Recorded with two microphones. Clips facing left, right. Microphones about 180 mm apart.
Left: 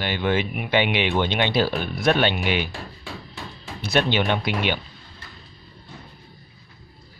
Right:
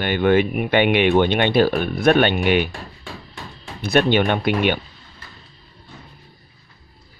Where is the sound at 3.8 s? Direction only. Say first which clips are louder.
Right 5 dB; 55° right (ahead or behind).